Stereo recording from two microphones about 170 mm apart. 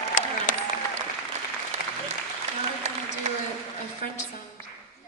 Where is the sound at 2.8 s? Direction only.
40° right (ahead or behind).